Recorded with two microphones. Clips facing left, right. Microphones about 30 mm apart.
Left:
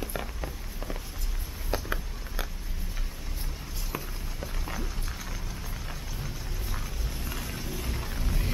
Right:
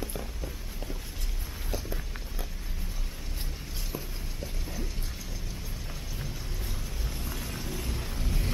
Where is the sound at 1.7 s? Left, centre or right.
Left.